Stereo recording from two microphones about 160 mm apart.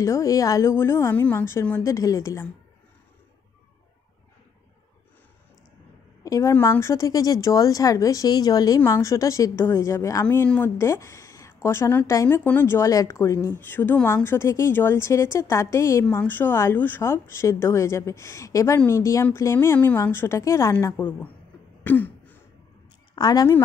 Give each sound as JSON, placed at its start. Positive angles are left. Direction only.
{"t": 0.0, "sound": "speech", "side_deg": 20}
{"t": 6.2, "sound": "speech", "side_deg": 20}
{"t": 21.8, "sound": "throat clearing", "side_deg": 10}
{"t": 23.1, "sound": "speech", "side_deg": 25}